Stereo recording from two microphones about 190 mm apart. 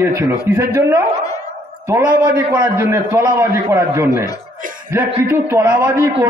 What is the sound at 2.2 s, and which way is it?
Speech, 20° right (ahead or behind).